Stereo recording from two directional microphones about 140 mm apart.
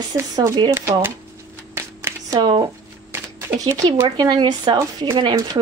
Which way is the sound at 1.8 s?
20° right (ahead or behind).